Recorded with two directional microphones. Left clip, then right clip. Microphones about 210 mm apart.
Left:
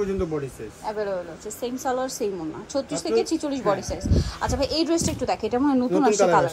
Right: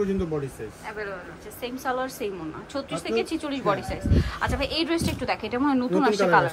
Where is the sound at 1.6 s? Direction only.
20° left (ahead or behind).